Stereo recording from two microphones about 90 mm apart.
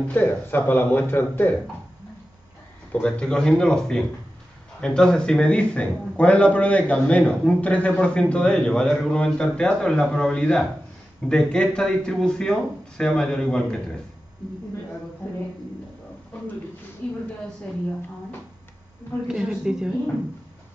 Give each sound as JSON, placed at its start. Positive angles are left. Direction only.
{"t": 0.1, "sound": "speech", "side_deg": 20}
{"t": 2.9, "sound": "a man's voice", "side_deg": 10}
{"t": 17.0, "sound": "a man's voice", "side_deg": 15}
{"t": 19.2, "sound": "speech", "side_deg": -10}